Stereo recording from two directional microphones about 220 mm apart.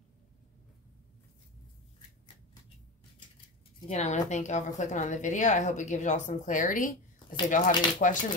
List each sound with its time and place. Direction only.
3.9 s speech: 30° left (ahead or behind)